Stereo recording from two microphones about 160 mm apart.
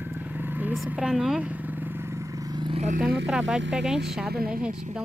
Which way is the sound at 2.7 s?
45° right (ahead or behind).